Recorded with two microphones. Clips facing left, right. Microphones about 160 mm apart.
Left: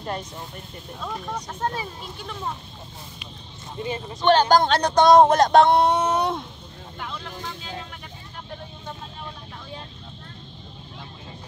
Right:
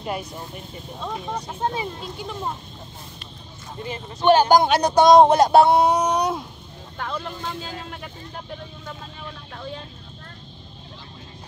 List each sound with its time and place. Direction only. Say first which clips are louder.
0.0 s speech: right 2 dB; 10° right (ahead or behind)
4.2 s speech: right 2 dB; 10° right (ahead or behind)
7.1 s vehicle: right 6 dB; 50° right (ahead or behind)